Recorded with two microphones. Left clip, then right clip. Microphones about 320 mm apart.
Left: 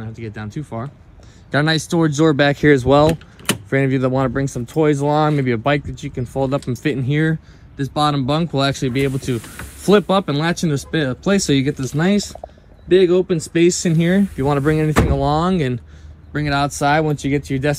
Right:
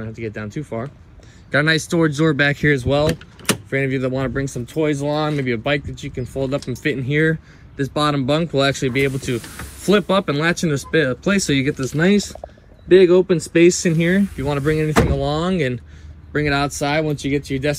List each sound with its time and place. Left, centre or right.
0.0 s speech: centre
11.7 s speech: centre; by 17.7 s left